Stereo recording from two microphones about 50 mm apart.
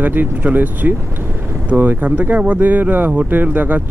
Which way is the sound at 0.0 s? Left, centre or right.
Right.